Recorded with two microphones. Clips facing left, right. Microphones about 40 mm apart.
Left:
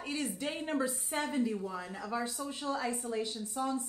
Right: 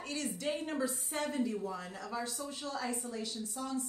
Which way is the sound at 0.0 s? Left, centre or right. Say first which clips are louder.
Left 1 dB; centre.